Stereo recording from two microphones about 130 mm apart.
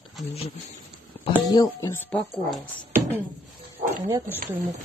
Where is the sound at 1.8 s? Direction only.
20° left (ahead or behind).